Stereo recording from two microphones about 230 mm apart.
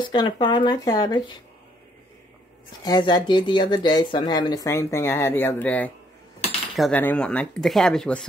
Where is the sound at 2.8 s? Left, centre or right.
Centre.